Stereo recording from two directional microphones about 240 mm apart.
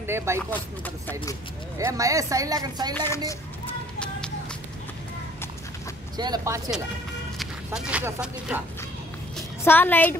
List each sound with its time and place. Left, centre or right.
0.0 s speech: centre
0.4 s speech: centre
1.8 s speech: centre
2.9 s speech: centre
6.1 s speech: centre
7.3 s speech: centre
9.7 s speech: centre